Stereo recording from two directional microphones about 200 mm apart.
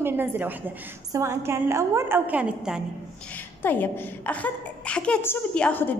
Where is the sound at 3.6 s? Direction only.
10° left (ahead or behind).